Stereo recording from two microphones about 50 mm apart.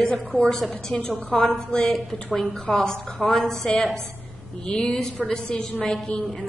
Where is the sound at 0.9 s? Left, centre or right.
Centre.